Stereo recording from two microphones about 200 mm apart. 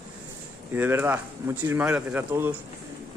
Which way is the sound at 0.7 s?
10° right (ahead or behind).